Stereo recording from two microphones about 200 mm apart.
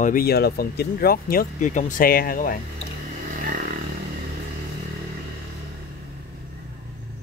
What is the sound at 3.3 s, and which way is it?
Vehicle, 40° right (ahead or behind).